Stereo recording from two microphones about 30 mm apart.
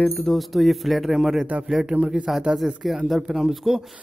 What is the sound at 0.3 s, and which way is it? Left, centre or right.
Speech, centre.